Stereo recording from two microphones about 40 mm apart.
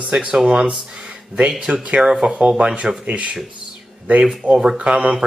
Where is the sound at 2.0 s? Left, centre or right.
Centre.